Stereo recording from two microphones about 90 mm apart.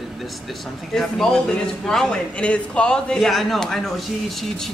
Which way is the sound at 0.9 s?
5° left (ahead or behind).